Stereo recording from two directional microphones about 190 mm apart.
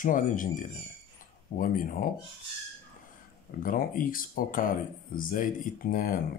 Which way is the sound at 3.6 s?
50° left (ahead or behind).